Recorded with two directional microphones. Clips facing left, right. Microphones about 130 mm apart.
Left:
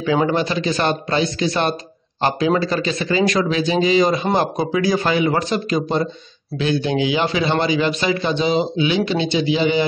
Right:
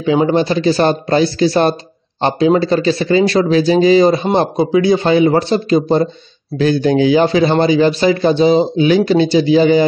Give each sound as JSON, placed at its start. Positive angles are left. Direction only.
{"t": 0.0, "sound": "a man's voice", "side_deg": -25}